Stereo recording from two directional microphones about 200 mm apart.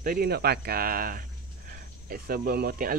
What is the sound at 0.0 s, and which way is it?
Speech, 45° right (ahead or behind).